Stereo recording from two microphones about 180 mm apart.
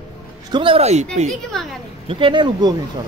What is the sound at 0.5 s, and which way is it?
Speech, 30° right (ahead or behind).